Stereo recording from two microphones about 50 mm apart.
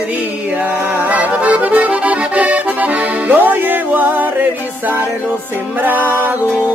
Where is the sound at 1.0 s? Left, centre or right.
Right.